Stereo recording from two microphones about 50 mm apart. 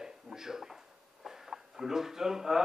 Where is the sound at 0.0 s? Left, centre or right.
Centre.